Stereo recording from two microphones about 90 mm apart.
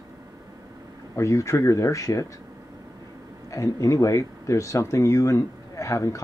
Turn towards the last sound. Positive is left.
turn(degrees=35)  # may be behind; listen again after turning